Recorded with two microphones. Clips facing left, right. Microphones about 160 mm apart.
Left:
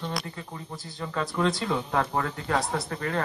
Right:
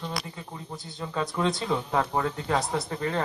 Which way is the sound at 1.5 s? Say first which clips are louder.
Even; centre (ahead or behind).